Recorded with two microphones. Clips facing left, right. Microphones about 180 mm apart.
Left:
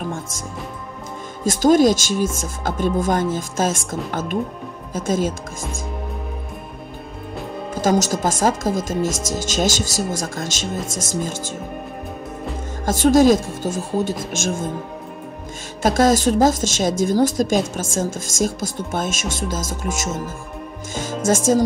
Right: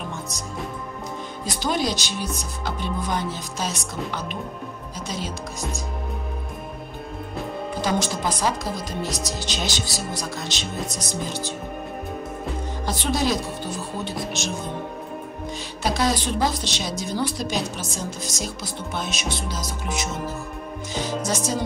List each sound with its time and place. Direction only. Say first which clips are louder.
1.4 s a woman's voice: left 12 dB; 45° left (ahead or behind)
7.7 s a woman's voice: left 7 dB; 45° left (ahead or behind)
12.8 s a woman's voice: left 11 dB; 45° left (ahead or behind)
15.8 s a woman's voice: left 8 dB; 45° left (ahead or behind)
20.9 s music: left 6 dB; 50° left (ahead or behind)